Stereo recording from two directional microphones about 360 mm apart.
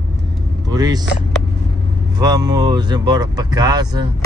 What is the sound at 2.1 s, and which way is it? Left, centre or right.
Speech, centre.